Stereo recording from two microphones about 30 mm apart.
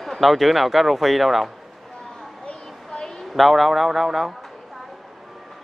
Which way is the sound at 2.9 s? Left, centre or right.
Left.